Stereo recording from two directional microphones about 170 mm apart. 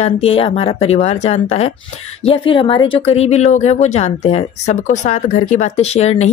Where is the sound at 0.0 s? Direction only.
35° left (ahead or behind).